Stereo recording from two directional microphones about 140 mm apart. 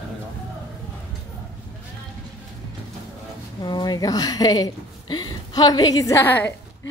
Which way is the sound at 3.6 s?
30° left (ahead or behind).